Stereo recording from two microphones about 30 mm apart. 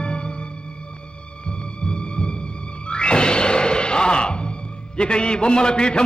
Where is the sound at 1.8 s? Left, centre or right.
Left.